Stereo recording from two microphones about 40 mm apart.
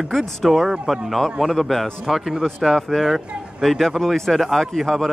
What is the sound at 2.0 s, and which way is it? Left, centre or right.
Speech, centre.